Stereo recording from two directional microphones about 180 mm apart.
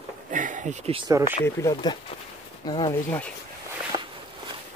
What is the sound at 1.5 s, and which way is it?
Speech, 15° left (ahead or behind).